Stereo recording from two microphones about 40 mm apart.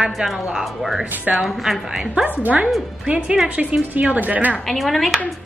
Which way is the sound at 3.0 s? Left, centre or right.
Right.